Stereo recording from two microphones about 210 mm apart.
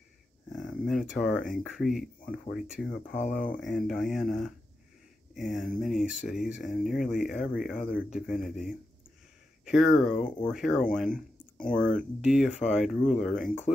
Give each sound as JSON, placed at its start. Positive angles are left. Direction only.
{"t": 0.6, "sound": "a sound", "side_deg": 0}
{"t": 1.2, "sound": "speech", "side_deg": 5}
{"t": 3.1, "sound": "speech", "side_deg": 40}
{"t": 3.6, "sound": "speech", "side_deg": 0}
{"t": 11.1, "sound": "a sound", "side_deg": 40}
{"t": 12.2, "sound": "speech", "side_deg": -5}
{"t": 12.4, "sound": "speech", "side_deg": 35}
{"t": 13.1, "sound": "speech", "side_deg": 0}